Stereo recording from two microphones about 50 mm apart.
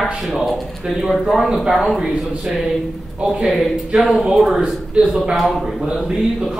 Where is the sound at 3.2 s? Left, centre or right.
Centre.